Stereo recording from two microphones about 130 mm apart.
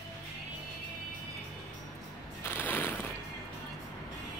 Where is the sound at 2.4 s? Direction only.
15° left (ahead or behind).